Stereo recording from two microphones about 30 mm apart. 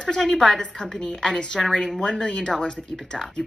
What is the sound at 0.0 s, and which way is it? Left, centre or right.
A woman's voice, left.